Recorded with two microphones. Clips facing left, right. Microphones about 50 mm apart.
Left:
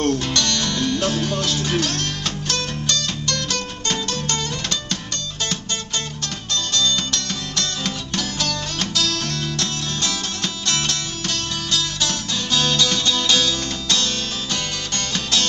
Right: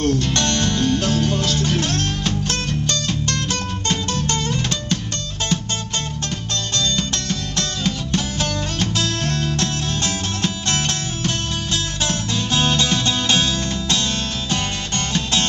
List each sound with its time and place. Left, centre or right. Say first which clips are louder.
0.0 s music: right 1 dB; centre
0.3 s music: right 2 dB; right
1.0 s music: right 2 dB; centre
1.8 s music: right 1 dB; right
6.5 s music: left 2 dB; right
7.2 s music: right 2 dB; centre
8.2 s music: right 1 dB; right